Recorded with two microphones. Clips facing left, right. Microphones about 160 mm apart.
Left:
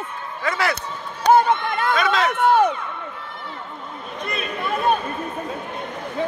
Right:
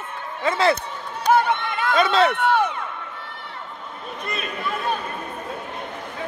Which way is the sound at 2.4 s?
45° left (ahead or behind).